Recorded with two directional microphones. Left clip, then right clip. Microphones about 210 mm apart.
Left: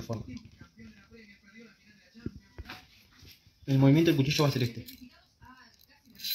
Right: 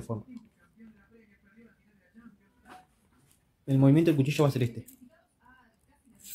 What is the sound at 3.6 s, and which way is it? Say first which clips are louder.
Speech: right 1 dB; 15° right (ahead or behind).